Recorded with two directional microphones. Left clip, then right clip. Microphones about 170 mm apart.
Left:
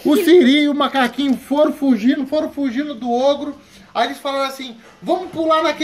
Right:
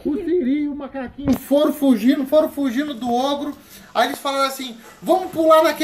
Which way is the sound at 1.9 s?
5° left (ahead or behind).